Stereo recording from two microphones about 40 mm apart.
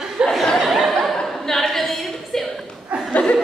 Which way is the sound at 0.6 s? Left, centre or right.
Centre.